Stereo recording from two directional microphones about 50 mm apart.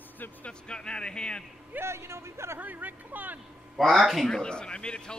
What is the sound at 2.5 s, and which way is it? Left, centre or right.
Speech, right.